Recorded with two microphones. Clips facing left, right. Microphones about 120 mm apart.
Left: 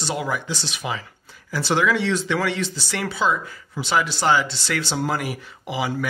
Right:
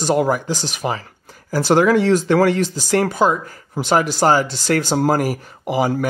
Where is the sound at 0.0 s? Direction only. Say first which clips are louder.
Right 9 dB; 45° right (ahead or behind).